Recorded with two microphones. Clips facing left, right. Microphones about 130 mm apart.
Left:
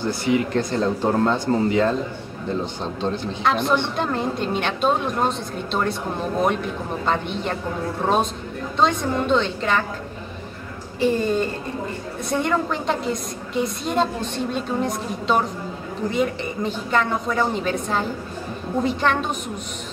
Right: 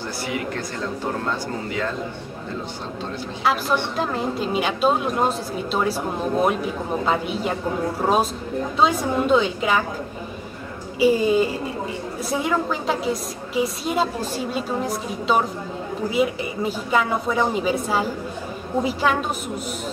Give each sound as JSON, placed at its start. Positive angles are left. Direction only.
{"t": 0.3, "sound": "speech", "side_deg": 25}
{"t": 3.4, "sound": "a woman's voice", "side_deg": -5}
{"t": 11.0, "sound": "a woman's voice", "side_deg": -5}